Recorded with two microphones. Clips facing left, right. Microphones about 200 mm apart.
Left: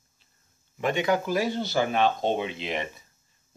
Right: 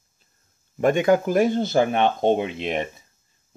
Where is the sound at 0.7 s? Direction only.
50° right (ahead or behind).